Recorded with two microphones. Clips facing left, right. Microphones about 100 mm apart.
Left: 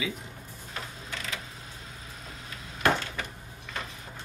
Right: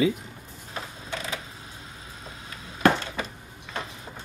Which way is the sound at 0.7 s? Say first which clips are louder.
Right 4 dB; 25° right (ahead or behind).